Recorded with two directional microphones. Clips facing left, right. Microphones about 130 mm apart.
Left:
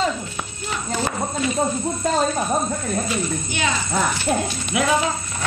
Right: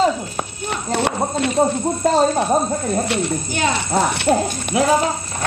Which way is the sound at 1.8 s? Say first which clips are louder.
Right 5 dB; 40° right (ahead or behind).